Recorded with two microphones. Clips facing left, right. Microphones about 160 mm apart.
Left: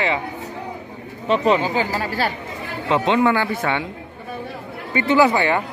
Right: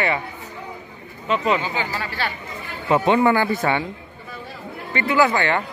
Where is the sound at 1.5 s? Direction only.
40° left (ahead or behind).